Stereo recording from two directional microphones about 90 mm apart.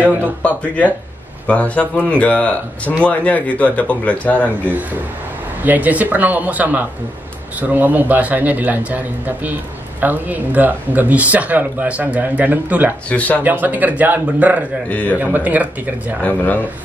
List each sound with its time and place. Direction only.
0.0 s a sound: 20° right (ahead or behind)
0.4 s speech: 15° left (ahead or behind)
5.6 s a man's voice: 20° right (ahead or behind)
14.9 s speech: 15° left (ahead or behind)
15.1 s a man's voice: 20° right (ahead or behind)
16.2 s speech: 20° left (ahead or behind)